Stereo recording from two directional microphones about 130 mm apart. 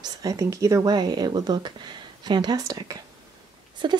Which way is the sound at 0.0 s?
25° right (ahead or behind).